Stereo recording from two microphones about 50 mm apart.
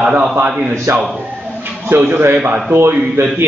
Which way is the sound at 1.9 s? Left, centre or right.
Right.